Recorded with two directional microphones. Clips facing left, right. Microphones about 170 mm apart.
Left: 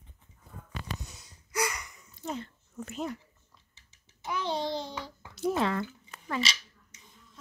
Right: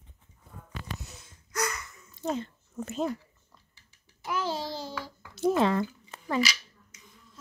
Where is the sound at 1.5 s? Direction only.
10° left (ahead or behind).